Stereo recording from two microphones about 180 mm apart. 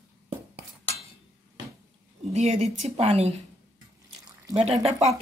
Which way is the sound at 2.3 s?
40° right (ahead or behind).